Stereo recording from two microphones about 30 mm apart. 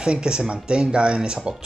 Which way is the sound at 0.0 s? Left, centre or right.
Right.